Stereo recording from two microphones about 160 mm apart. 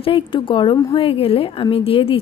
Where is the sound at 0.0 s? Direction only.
35° left (ahead or behind).